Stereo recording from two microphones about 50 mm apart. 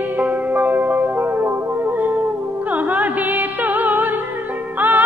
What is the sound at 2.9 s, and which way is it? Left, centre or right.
Music, right.